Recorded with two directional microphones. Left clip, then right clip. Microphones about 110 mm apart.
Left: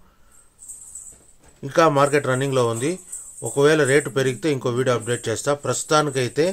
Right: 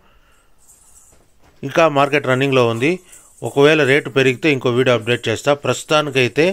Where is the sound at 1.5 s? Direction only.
40° right (ahead or behind).